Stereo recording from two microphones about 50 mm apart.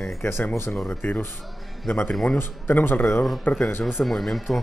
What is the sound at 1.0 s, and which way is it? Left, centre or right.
Speech, left.